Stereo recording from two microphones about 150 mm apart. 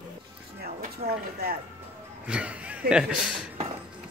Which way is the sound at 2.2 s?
10° right (ahead or behind).